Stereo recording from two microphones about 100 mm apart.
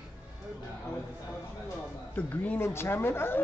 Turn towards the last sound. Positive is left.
turn(degrees=25)  # may be behind; listen again after turning